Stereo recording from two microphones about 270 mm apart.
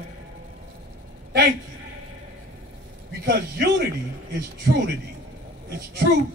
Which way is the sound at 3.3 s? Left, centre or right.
Right.